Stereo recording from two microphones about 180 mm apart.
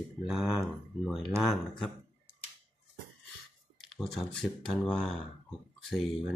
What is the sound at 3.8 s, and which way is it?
Speech, centre (ahead or behind).